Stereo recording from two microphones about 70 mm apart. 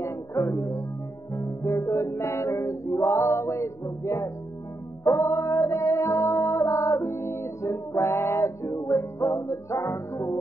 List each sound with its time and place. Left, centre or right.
0.0 s music: left
8.1 s music: left